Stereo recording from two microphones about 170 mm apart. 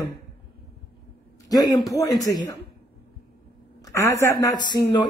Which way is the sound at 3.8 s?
20° left (ahead or behind).